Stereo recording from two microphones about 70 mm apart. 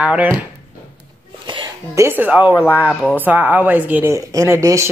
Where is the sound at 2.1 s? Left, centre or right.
Right.